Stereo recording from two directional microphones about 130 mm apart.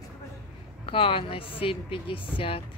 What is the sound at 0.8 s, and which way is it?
Speech, 45° left (ahead or behind).